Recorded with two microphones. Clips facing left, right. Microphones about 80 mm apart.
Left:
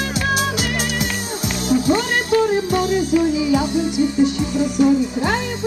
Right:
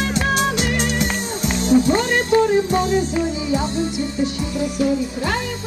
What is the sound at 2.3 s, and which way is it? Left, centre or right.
Music, right.